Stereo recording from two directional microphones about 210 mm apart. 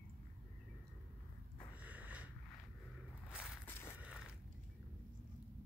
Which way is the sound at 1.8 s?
5° right (ahead or behind).